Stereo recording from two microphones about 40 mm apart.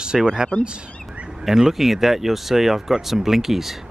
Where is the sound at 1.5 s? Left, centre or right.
Centre.